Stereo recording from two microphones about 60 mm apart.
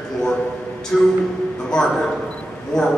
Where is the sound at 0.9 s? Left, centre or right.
Centre.